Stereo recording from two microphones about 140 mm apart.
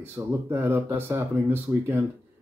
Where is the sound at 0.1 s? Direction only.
15° right (ahead or behind).